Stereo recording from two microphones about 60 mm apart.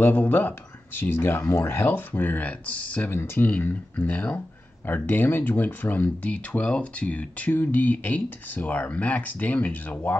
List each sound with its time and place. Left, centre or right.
0.0 s speech: left
3.1 s speech: left